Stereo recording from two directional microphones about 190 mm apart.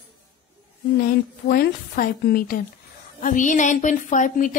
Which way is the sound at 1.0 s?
50° left (ahead or behind).